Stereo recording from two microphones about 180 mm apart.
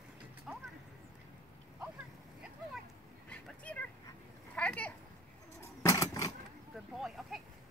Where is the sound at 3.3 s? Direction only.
5° left (ahead or behind).